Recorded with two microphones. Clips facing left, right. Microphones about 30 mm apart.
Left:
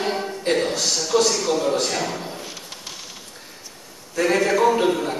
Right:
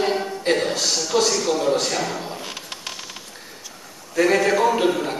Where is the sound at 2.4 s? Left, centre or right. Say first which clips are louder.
Right 3 dB; right.